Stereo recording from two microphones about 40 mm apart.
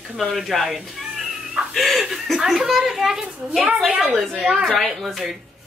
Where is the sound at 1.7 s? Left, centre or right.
Centre.